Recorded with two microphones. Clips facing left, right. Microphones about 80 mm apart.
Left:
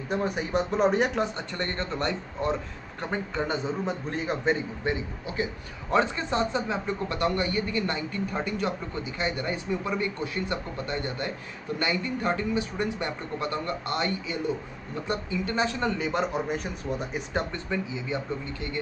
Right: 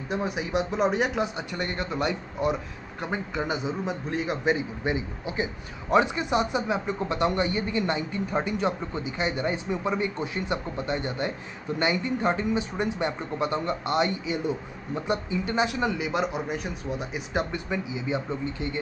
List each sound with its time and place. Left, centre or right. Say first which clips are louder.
0.1 s speech: left 1 dB; centre
17.9 s speech: right 2 dB; centre